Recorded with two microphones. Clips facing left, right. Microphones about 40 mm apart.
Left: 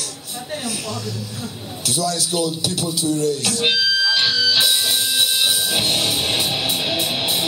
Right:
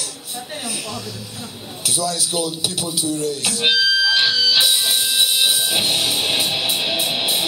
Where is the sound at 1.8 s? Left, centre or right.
Centre.